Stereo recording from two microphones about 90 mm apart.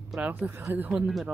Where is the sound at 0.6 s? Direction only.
25° right (ahead or behind).